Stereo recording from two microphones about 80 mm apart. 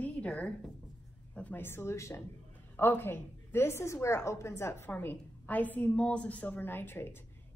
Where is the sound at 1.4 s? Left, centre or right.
Left.